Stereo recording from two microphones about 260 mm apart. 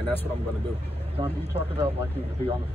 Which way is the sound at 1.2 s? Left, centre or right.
Centre.